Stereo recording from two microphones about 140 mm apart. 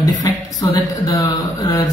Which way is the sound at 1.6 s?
25° left (ahead or behind).